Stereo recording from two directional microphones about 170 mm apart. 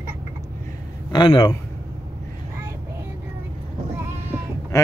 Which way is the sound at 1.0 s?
25° left (ahead or behind).